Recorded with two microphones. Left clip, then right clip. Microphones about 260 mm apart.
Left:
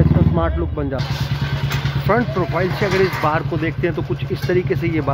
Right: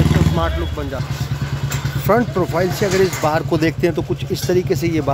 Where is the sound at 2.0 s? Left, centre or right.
Centre.